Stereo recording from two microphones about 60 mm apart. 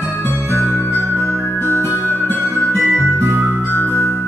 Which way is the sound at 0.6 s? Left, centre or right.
Right.